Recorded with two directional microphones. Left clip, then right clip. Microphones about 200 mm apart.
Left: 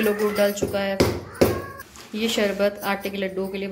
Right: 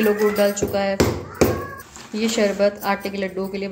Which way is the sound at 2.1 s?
Centre (ahead or behind).